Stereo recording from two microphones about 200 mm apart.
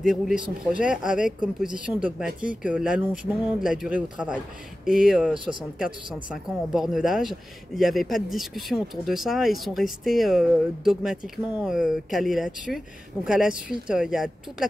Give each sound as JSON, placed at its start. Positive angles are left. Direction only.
{"t": 0.0, "sound": "speech", "side_deg": -5}
{"t": 5.4, "sound": "speech", "side_deg": -25}
{"t": 5.8, "sound": "speech", "side_deg": -5}